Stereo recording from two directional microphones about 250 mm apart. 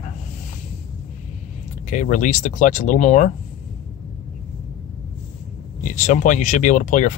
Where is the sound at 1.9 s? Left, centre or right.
Left.